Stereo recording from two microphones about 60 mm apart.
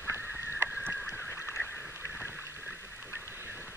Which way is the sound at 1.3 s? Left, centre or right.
Left.